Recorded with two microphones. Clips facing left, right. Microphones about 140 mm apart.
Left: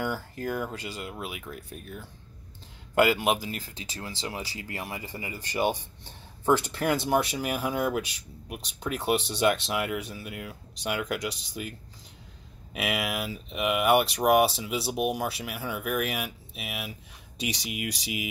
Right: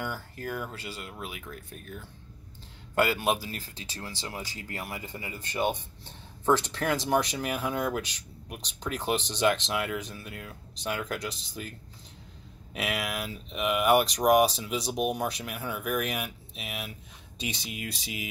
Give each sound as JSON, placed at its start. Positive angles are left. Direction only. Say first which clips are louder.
{"t": 0.0, "sound": "speech", "louder": "left 4 dB", "side_deg": 15}
{"t": 2.9, "sound": "speech", "louder": "left 3 dB", "side_deg": 15}
{"t": 6.4, "sound": "speech", "louder": "left 1 dB", "side_deg": 10}
{"t": 12.7, "sound": "speech", "louder": "left 2 dB", "side_deg": 10}